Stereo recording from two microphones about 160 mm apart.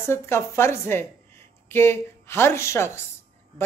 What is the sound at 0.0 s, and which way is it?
A woman's voice, 15° left (ahead or behind).